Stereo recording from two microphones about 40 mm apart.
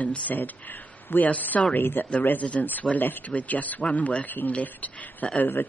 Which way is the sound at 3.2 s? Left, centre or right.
Left.